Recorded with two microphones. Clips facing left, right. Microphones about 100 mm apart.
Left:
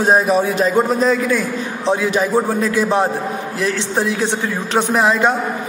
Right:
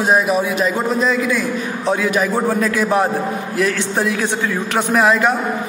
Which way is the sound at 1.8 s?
25° left (ahead or behind).